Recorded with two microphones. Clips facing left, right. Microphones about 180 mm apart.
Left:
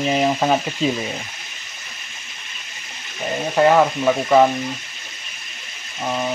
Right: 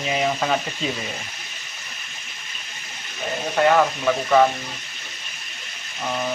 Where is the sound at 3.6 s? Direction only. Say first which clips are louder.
Left 3 dB; 25° left (ahead or behind).